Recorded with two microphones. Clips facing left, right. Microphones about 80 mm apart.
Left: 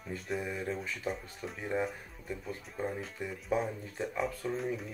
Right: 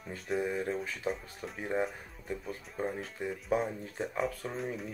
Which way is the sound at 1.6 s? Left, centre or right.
Centre.